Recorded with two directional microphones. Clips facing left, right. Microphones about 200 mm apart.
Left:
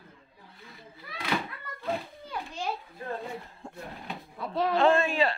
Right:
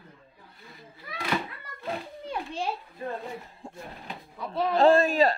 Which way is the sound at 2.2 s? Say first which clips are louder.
Right 7 dB; 30° right (ahead or behind).